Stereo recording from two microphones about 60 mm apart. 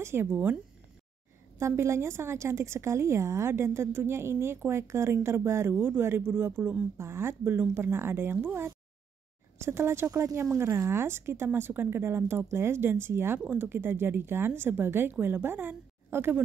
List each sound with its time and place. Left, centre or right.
0.0 s a woman's voice: right
0.3 s speech: right
1.6 s a woman's voice: right
7.0 s a woman's voice: right
10.1 s a woman's voice: right